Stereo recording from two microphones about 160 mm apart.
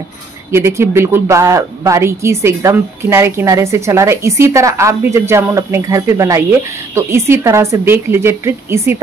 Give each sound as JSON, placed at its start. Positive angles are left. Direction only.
{"t": 0.5, "sound": "speech", "side_deg": -15}